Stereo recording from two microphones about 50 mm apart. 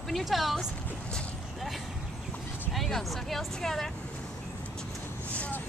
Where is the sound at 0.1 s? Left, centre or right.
Centre.